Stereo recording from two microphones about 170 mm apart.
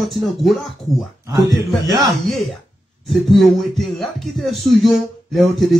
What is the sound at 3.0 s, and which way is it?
Speech, centre (ahead or behind).